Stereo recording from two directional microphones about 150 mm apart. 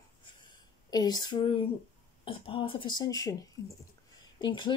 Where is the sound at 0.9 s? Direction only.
25° left (ahead or behind).